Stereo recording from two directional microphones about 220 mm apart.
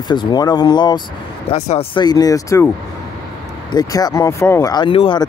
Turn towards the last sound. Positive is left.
turn(degrees=25)  # may be behind; listen again after turning